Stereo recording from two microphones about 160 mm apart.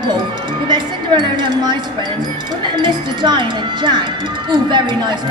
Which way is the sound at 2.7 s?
30° right (ahead or behind).